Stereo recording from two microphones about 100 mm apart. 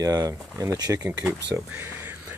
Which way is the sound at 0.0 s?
35° right (ahead or behind).